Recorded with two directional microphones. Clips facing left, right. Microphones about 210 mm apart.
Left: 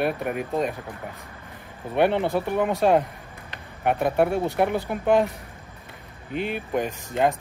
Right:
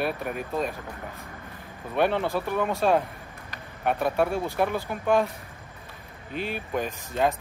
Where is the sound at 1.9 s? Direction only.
20° left (ahead or behind).